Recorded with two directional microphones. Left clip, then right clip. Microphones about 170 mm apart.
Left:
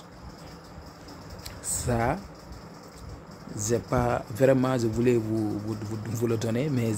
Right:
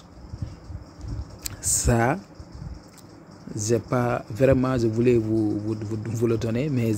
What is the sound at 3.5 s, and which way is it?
A man's voice, 25° right (ahead or behind).